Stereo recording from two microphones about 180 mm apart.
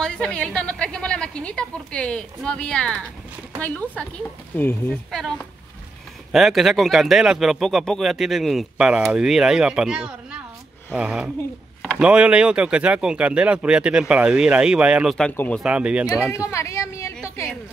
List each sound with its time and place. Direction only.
0.0 s speech: 5° left (ahead or behind)
15.6 s speech: 5° right (ahead or behind)
16.3 s a sound: 15° left (ahead or behind)